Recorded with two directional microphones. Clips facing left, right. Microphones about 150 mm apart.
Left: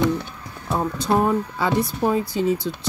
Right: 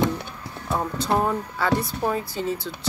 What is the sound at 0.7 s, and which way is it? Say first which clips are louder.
A woman's voice: left 3 dB; 15° left (ahead or behind).